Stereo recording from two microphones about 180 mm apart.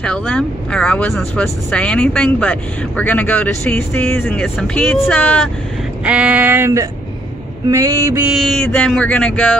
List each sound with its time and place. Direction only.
0.0 s speech: 5° left (ahead or behind)
6.0 s speech: 10° right (ahead or behind)
8.4 s a sound: 5° left (ahead or behind)
8.6 s speech: 5° left (ahead or behind)